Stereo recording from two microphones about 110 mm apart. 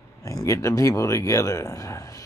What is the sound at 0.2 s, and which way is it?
Speech, 30° left (ahead or behind).